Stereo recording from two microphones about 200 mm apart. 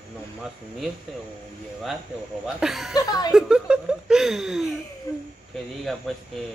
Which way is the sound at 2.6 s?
Centre (ahead or behind).